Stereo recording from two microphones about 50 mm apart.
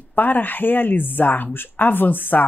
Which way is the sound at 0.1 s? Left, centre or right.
Left.